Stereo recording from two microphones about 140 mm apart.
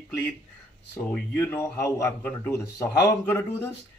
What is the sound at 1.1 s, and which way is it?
Speech, 15° left (ahead or behind).